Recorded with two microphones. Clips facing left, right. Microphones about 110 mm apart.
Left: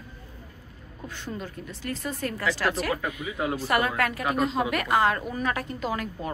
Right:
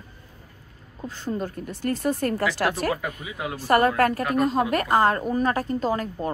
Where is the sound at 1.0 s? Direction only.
40° right (ahead or behind).